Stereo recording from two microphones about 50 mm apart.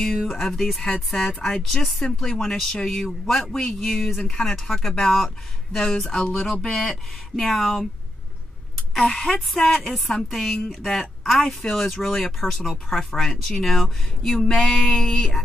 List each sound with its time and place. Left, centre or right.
0.5 s speech: centre
2.0 s speech: centre
5.9 s speech: centre
6.3 s speech: centre
9.0 s speech: centre